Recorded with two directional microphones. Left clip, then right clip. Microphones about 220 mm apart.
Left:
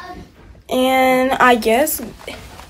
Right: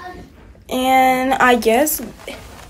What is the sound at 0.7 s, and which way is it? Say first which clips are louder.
A woman's voice: even; 5° right (ahead or behind).